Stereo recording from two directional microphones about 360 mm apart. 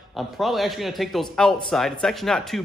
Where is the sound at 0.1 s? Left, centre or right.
Centre.